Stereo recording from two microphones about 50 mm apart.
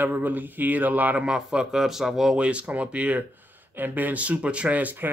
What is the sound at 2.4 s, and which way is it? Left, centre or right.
Speech, right.